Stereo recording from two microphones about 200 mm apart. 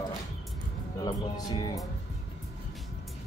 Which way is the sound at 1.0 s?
20° left (ahead or behind).